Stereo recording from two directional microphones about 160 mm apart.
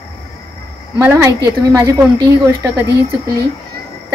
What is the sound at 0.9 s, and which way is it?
A woman's voice, 15° right (ahead or behind).